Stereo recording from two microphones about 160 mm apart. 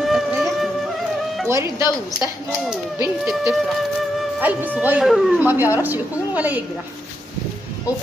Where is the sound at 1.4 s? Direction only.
20° right (ahead or behind).